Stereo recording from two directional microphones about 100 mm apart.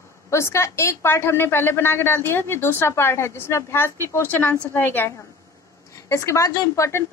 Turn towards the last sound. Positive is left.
turn(degrees=30)  # may be behind; listen again after turning